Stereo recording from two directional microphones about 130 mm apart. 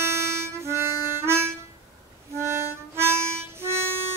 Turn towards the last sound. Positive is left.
turn(degrees=-20)  # may be behind; listen again after turning